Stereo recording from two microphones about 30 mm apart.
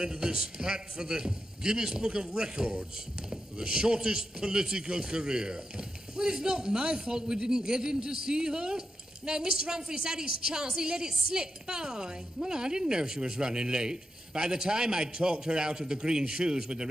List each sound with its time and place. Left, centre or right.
0.0 s a man's voice: right